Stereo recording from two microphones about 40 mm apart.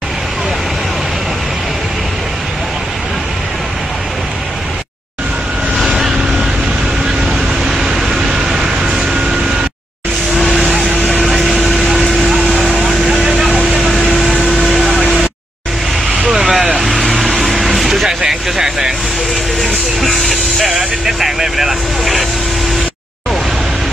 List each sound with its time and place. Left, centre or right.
5.9 s vehicle: centre
7.2 s vehicle: centre
10.4 s vehicle: centre
13.5 s vehicle: right
13.7 s vehicle: centre
14.6 s a sound: centre
16.3 s vehicle: centre
18.2 s vehicle: centre
19.6 s music: centre
20.7 s vehicle: centre